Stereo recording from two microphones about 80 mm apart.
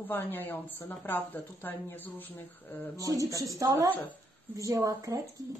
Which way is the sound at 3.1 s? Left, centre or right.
Right.